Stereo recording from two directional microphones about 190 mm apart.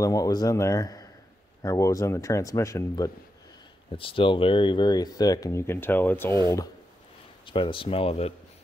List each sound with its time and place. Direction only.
0.0 s speech: 20° left (ahead or behind)
3.9 s speech: 30° left (ahead or behind)
7.4 s speech: 25° left (ahead or behind)